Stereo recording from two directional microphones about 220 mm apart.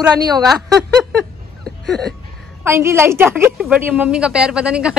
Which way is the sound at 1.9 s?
Centre (ahead or behind).